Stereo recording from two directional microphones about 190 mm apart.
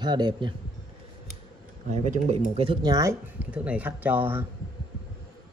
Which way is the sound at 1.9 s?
40° right (ahead or behind).